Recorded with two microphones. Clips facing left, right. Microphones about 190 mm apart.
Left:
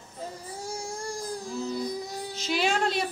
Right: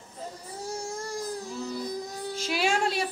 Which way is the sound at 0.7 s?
Centre (ahead or behind).